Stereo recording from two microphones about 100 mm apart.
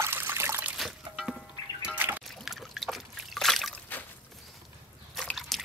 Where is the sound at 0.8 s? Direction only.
Centre (ahead or behind).